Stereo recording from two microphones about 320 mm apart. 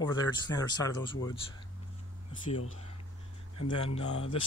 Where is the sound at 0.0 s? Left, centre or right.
Centre.